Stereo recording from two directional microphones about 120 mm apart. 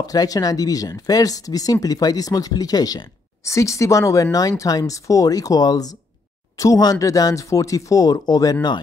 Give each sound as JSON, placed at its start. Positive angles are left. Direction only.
{"t": 0.0, "sound": "speech", "side_deg": 30}